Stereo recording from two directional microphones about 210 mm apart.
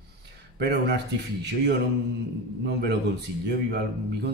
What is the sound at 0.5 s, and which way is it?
Speech, 55° right (ahead or behind).